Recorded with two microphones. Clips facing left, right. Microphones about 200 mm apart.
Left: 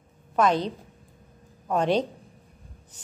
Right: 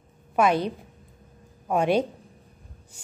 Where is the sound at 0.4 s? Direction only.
10° right (ahead or behind).